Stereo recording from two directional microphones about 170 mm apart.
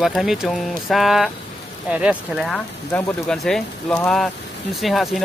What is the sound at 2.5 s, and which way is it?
Speech, 5° left (ahead or behind).